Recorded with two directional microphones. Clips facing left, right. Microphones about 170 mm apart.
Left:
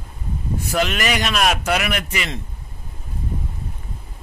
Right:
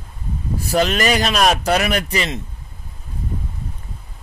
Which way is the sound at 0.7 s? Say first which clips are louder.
Right 4 dB; 35° right (ahead or behind).